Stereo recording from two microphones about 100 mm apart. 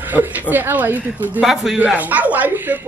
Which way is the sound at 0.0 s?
20° right (ahead or behind).